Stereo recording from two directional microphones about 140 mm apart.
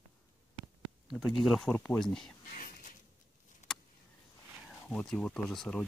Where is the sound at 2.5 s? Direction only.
70° left (ahead or behind).